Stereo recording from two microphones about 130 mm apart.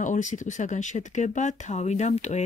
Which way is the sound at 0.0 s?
75° left (ahead or behind).